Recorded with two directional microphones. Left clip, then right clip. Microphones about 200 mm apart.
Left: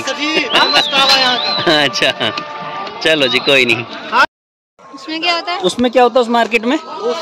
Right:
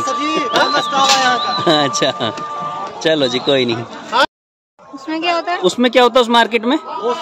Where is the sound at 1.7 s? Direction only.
25° right (ahead or behind).